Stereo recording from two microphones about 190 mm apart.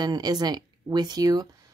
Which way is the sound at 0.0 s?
20° right (ahead or behind).